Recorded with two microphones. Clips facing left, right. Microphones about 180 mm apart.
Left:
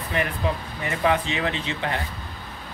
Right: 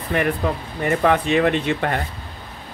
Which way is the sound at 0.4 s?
55° right (ahead or behind).